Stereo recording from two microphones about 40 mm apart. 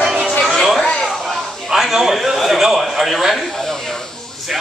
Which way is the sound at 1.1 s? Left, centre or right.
Centre.